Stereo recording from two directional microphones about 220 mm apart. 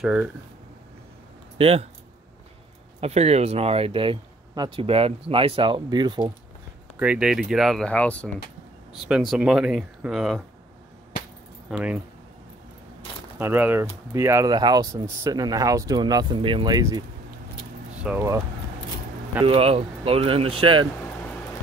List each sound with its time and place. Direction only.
0.0 s speech: 5° right (ahead or behind)
1.6 s speech: 25° right (ahead or behind)
3.0 s speech: 30° right (ahead or behind)
7.0 s speech: 5° right (ahead or behind)
11.7 s speech: 5° right (ahead or behind)
13.4 s speech: 10° right (ahead or behind)
18.0 s speech: 10° right (ahead or behind)
19.4 s speech: 25° right (ahead or behind)